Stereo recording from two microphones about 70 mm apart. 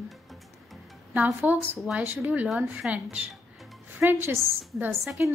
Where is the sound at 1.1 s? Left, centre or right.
Right.